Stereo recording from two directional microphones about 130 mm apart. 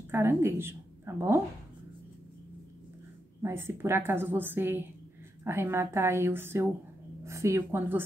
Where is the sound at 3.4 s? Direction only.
20° right (ahead or behind).